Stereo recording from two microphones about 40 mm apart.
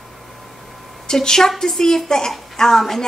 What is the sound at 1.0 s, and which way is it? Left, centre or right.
A woman's voice, centre.